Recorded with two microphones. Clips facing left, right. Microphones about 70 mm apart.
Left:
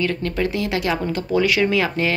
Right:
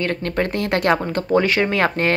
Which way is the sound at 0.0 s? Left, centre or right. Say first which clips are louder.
Even; right.